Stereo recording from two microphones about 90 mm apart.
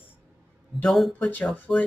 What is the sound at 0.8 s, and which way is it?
Speech, 5° left (ahead or behind).